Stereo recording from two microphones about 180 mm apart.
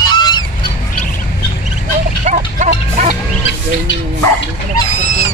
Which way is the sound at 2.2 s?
40° right (ahead or behind).